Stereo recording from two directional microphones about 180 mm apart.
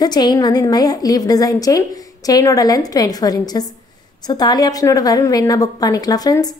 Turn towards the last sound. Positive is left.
turn(degrees=20)  # may be behind; listen again after turning